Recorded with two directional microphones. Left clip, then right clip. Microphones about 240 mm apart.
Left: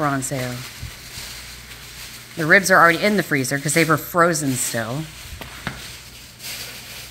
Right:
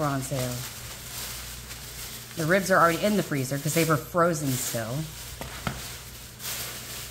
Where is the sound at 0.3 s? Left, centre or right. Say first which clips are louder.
Left 5 dB; centre.